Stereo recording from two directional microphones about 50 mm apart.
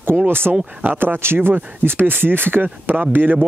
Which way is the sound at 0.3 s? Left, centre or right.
Right.